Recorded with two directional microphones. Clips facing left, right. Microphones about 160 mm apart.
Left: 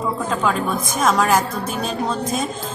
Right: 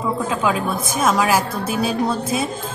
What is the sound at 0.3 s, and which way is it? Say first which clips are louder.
A woman's voice: left 2 dB; 5° right (ahead or behind).